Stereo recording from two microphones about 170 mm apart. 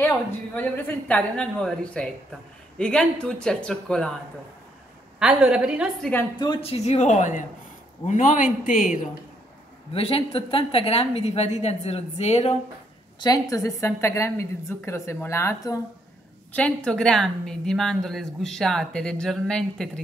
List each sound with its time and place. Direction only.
0.6 s a woman's voice: 10° left (ahead or behind)
5.2 s a woman's voice: 5° right (ahead or behind)
6.4 s a woman's voice: 30° left (ahead or behind); by 9.0 s 55° left (ahead or behind)
9.9 s a woman's voice: 35° left (ahead or behind)
13.2 s a woman's voice: 20° left (ahead or behind)
16.5 s a woman's voice: 5° left (ahead or behind)